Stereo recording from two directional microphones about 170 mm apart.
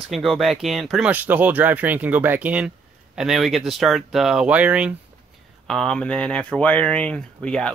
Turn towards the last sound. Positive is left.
turn(degrees=5)  # may be behind; listen again after turning